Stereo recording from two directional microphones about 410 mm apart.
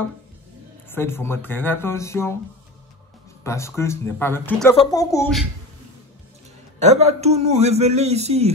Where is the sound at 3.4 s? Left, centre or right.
Centre.